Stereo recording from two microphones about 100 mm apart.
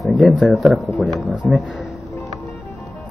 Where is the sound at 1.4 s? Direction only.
10° left (ahead or behind).